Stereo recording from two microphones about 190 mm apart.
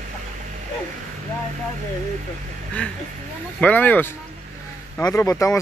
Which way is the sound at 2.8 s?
5° left (ahead or behind).